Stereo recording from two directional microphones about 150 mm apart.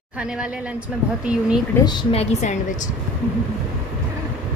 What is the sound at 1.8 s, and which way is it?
Speech, 30° left (ahead or behind).